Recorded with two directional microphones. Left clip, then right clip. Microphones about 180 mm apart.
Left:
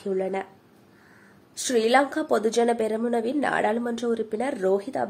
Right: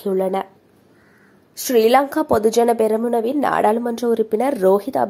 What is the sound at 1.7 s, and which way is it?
Speech, 30° right (ahead or behind).